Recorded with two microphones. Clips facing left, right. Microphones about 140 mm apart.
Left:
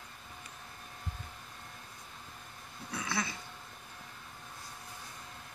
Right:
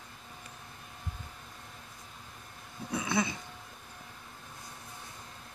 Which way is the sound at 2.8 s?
20° right (ahead or behind).